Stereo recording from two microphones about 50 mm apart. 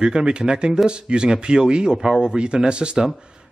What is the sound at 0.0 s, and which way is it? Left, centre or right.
Speech, centre.